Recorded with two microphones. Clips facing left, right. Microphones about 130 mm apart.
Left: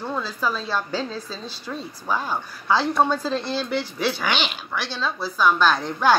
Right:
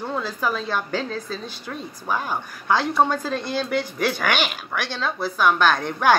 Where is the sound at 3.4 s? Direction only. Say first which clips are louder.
Right 1 dB; 50° right (ahead or behind).